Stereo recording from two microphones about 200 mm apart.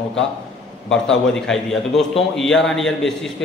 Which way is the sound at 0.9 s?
5° left (ahead or behind).